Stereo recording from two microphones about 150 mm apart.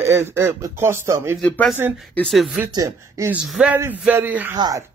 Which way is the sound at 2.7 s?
20° right (ahead or behind).